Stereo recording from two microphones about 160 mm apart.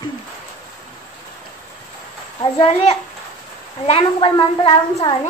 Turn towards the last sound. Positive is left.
turn(degrees=25)  # may be behind; listen again after turning